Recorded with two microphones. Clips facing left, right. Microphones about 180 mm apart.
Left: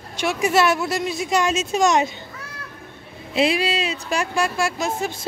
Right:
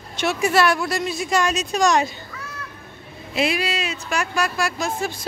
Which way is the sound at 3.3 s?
30° left (ahead or behind).